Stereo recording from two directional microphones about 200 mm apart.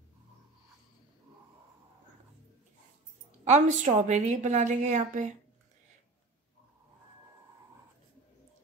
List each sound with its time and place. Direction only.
3.4 s a woman's voice: 35° right (ahead or behind)